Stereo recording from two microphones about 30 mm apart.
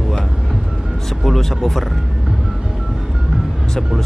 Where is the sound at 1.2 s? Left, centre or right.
Centre.